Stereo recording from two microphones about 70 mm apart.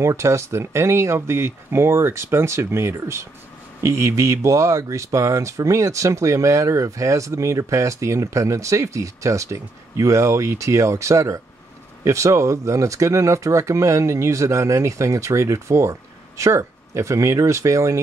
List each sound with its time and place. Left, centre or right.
0.0 s speech: right